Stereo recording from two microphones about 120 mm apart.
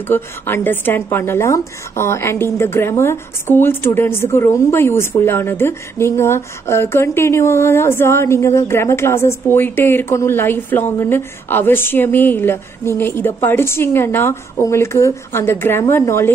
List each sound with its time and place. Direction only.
0.1 s speech: 15° left (ahead or behind)